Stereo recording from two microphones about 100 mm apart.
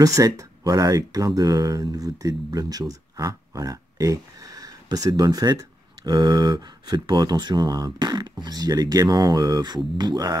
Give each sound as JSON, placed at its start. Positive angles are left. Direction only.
{"t": 0.0, "sound": "speech", "side_deg": -35}
{"t": 9.9, "sound": "music", "side_deg": -45}